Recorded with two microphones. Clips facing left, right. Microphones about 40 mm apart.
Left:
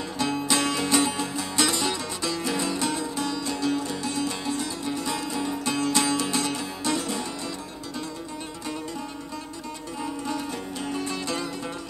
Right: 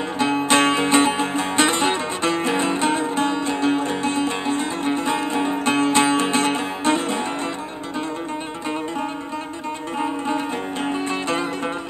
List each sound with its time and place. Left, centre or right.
0.2 s music: right
9.9 s music: right